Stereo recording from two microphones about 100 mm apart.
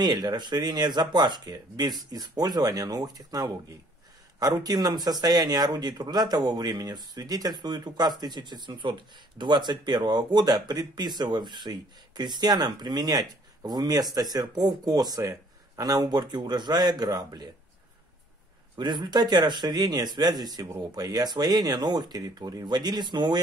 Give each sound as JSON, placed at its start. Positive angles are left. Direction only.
{"t": 0.0, "sound": "speech", "side_deg": -45}
{"t": 18.8, "sound": "speech", "side_deg": -45}